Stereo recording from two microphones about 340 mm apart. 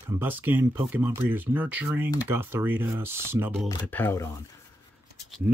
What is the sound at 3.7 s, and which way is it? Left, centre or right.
Speech, centre.